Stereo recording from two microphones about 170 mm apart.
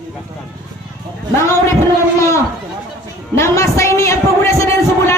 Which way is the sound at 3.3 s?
15° left (ahead or behind).